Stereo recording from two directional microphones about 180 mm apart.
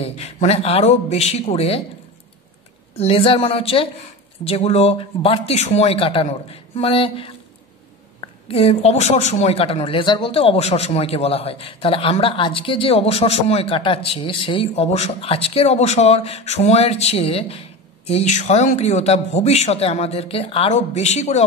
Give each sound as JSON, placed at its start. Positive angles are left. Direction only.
{"t": 0.0, "sound": "a woman's voice", "side_deg": 35}
{"t": 3.0, "sound": "a woman's voice", "side_deg": 30}